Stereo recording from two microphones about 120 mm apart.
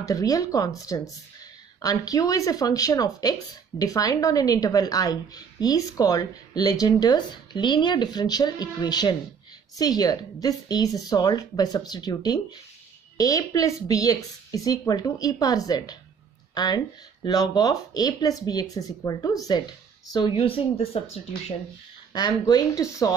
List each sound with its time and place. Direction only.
0.0 s speech: 30° left (ahead or behind)
20.3 s speech: 50° left (ahead or behind)
22.1 s speech: 35° left (ahead or behind)